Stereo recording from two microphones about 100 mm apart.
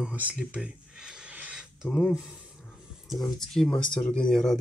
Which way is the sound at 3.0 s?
5° left (ahead or behind).